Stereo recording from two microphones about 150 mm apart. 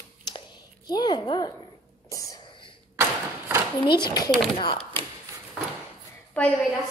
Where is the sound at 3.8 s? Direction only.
30° left (ahead or behind).